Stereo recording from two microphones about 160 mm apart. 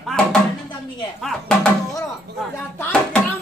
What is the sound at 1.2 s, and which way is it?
A woman's voice, 5° left (ahead or behind).